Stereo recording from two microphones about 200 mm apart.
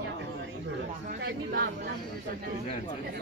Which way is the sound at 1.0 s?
50° right (ahead or behind).